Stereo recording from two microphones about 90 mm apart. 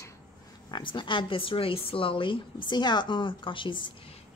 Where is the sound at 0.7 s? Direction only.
65° left (ahead or behind).